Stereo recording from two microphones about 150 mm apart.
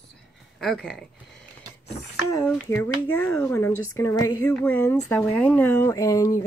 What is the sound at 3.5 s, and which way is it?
Speech, 20° left (ahead or behind).